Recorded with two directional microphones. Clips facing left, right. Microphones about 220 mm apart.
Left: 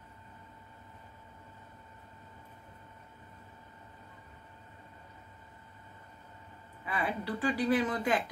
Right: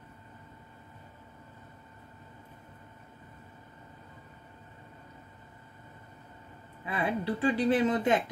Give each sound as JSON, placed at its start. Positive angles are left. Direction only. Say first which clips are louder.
{"t": 6.9, "sound": "a woman's voice", "louder": "right 4 dB", "side_deg": -25}